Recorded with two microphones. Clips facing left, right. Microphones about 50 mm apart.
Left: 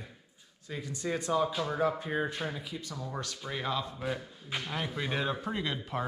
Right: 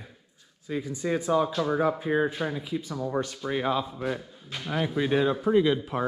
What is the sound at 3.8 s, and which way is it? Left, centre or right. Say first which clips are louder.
Speech: right 4 dB; centre.